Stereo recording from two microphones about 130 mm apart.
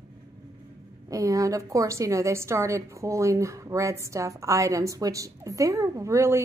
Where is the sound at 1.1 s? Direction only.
25° right (ahead or behind).